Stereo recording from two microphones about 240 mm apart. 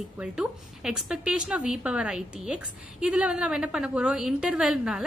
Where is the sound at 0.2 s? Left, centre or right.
Centre.